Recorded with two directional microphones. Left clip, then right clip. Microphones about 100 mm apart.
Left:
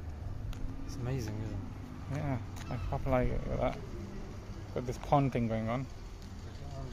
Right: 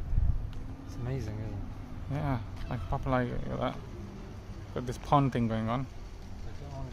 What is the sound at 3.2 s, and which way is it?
Speech, 20° right (ahead or behind).